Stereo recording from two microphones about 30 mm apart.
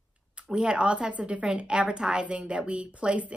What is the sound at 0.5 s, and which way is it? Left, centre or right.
Speech, right.